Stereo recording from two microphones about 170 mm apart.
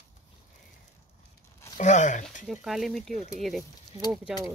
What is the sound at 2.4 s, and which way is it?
Speech, centre (ahead or behind).